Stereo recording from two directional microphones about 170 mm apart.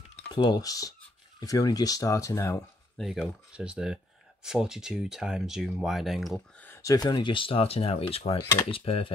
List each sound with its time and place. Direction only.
0.3 s speech: 25° left (ahead or behind)
3.0 s speech: centre (ahead or behind)
6.6 s speech: 15° left (ahead or behind); by 8.4 s 35° left (ahead or behind)
8.4 s speech: 20° left (ahead or behind)
8.6 s speech: 30° left (ahead or behind)